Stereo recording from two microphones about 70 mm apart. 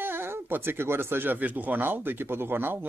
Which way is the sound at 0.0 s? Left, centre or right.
Right.